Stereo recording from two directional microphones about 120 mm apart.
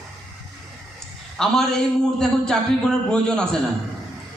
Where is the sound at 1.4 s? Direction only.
5° left (ahead or behind).